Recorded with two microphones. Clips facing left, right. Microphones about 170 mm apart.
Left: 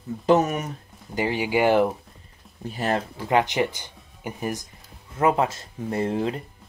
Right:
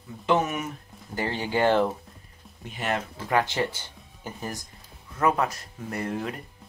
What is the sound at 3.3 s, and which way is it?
Speech, 20° left (ahead or behind).